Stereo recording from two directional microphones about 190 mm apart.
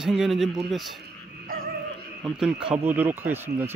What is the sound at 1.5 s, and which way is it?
Frog, 50° right (ahead or behind).